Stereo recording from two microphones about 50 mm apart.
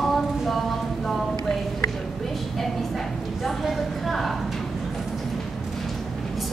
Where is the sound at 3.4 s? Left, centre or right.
Centre.